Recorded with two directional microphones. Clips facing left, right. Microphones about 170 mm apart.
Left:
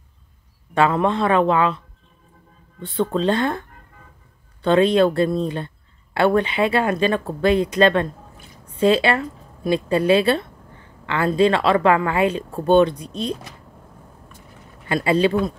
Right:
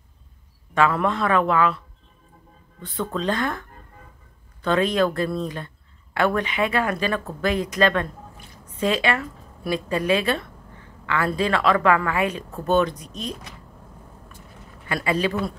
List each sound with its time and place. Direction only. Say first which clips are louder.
0.7 s speech: left 3 dB; 30° left (ahead or behind)
2.8 s a woman's voice: left 6 dB; 30° left (ahead or behind)
14.9 s speech: left 5 dB; 30° left (ahead or behind)